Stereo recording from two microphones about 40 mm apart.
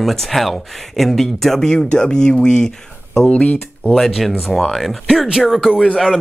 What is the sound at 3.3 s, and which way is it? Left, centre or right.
Speech, left.